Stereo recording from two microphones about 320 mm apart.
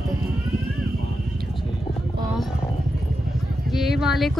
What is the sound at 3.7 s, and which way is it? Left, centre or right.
Speech, centre.